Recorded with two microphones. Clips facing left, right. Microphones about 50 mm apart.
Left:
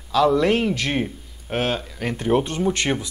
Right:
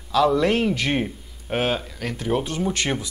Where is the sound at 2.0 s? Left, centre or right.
Centre.